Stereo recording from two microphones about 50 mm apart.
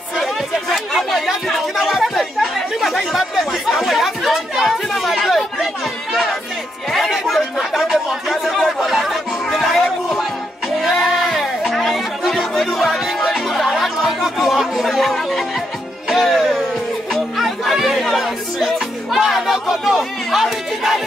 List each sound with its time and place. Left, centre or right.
0.2 s chatter: centre
6.9 s chatter: centre
10.8 s music: centre
14.9 s speech: centre
16.1 s music: centre